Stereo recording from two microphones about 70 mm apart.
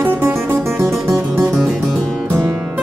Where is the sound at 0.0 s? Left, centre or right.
Right.